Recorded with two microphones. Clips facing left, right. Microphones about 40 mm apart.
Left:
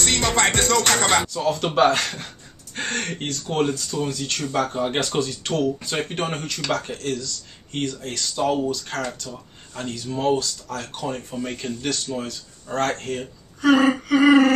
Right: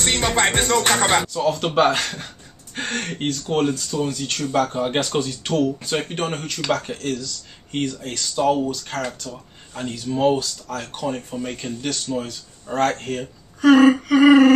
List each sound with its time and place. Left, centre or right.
0.0 s music: right
1.2 s speech: centre